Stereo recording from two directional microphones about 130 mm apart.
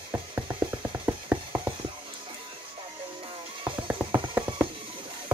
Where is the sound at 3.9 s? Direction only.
15° right (ahead or behind).